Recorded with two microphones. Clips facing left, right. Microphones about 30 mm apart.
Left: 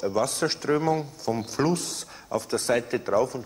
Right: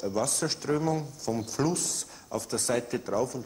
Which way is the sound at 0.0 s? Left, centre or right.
Left.